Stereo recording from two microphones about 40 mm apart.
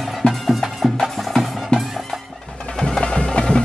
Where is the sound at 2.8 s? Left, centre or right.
Centre.